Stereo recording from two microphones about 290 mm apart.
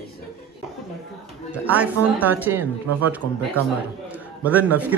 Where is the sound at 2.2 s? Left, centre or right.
Centre.